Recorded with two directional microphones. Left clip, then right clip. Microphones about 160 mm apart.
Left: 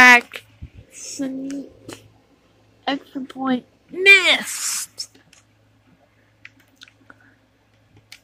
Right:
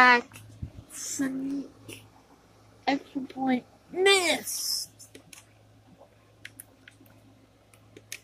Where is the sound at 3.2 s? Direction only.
Centre (ahead or behind).